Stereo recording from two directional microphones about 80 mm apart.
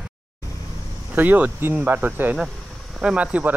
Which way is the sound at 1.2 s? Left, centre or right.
Right.